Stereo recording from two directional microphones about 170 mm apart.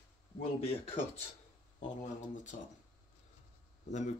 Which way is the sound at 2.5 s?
50° left (ahead or behind).